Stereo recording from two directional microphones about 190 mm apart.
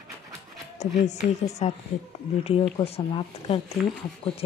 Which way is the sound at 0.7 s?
35° left (ahead or behind).